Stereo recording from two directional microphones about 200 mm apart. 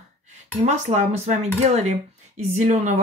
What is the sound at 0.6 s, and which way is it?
Speech, 35° right (ahead or behind).